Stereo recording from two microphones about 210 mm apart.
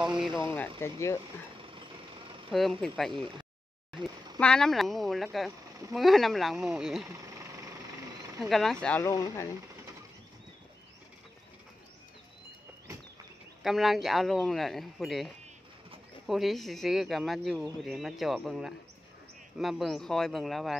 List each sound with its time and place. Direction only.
0.3 s speech: 20° right (ahead or behind)
0.7 s speech: 10° left (ahead or behind)
1.6 s vehicle: 25° right (ahead or behind)
2.5 s speech: centre (ahead or behind)
3.1 s speech: 25° right (ahead or behind)
4.4 s speech: 5° left (ahead or behind)
8.4 s speech: centre (ahead or behind)
13.6 s speech: centre (ahead or behind)